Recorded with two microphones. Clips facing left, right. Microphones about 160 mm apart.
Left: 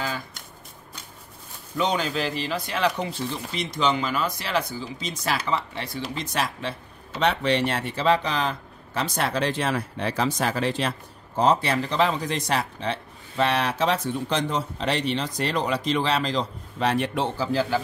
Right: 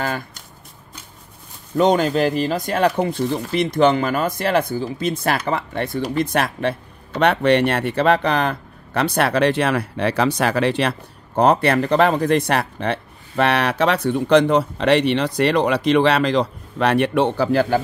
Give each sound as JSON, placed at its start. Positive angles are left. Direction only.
{"t": 1.8, "sound": "speech", "side_deg": -50}